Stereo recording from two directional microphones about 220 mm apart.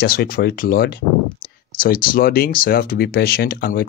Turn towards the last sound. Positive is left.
turn(degrees=45)  # may be behind; listen again after turning